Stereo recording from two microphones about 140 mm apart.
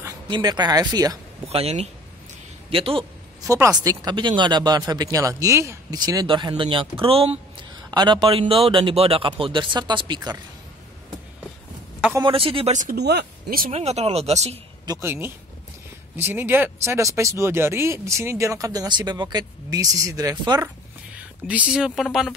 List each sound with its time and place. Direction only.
0.3 s speech: 30° right (ahead or behind)
1.5 s a man's voice: 45° right (ahead or behind)
3.4 s speech: 25° right (ahead or behind); by 7.3 s 45° right (ahead or behind)
7.9 s a man's voice: 35° right (ahead or behind)
12.2 s a man's voice: 40° right (ahead or behind)
14.9 s speech: 20° right (ahead or behind)
21.5 s speech: 10° right (ahead or behind)